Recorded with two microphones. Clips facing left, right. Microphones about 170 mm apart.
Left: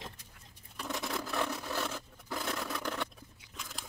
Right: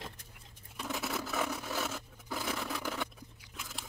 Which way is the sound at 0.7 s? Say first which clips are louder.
Even; 5° right (ahead or behind).